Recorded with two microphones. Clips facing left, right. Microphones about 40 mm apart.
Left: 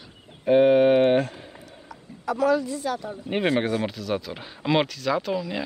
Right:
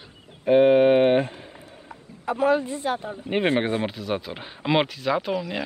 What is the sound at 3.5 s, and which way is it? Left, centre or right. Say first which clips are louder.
Speech: even; right.